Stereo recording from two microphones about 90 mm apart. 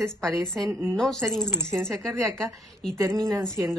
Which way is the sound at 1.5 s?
30° right (ahead or behind).